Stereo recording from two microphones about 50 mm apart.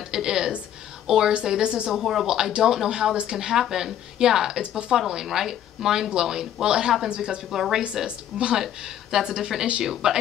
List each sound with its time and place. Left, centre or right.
0.1 s a sound: centre
1.0 s speech: centre
1.9 s speech: centre; by 10.2 s right